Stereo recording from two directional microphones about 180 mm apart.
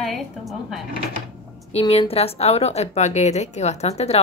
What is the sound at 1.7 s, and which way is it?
Speech, 35° left (ahead or behind).